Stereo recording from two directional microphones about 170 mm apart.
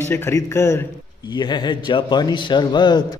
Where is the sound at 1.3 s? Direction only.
25° left (ahead or behind).